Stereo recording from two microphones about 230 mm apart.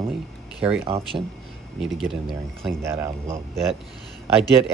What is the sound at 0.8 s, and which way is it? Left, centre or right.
Speech, right.